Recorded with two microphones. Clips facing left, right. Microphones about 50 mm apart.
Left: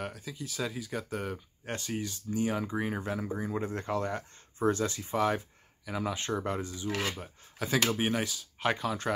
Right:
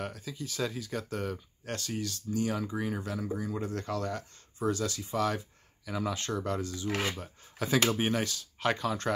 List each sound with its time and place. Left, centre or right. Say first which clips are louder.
0.0 s speech: right 1 dB; centre
7.2 s speech: right 1 dB; centre